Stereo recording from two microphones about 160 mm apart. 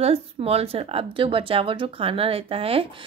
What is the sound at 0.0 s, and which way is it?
A woman's voice, 40° right (ahead or behind).